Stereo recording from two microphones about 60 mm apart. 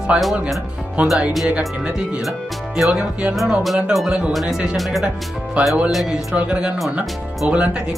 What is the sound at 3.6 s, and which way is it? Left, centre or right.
Speech, centre.